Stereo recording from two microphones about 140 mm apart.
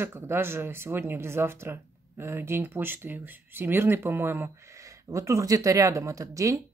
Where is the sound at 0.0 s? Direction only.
15° right (ahead or behind).